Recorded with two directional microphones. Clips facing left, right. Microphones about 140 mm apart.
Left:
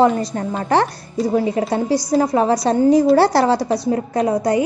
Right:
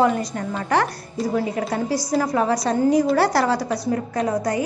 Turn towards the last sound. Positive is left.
turn(degrees=20)  # may be behind; listen again after turning